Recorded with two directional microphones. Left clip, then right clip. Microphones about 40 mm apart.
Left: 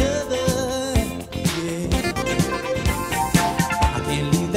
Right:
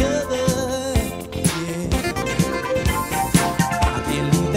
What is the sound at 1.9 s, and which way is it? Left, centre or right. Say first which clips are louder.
Music: even; left.